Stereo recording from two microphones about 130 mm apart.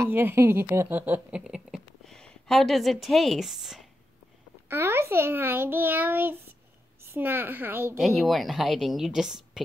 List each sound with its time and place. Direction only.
0.0 s a woman's voice: 15° right (ahead or behind)
4.6 s a child's voice: 20° right (ahead or behind)
8.0 s a woman's voice: centre (ahead or behind)